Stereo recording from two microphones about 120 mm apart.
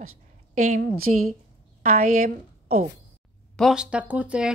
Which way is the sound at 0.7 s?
90° right.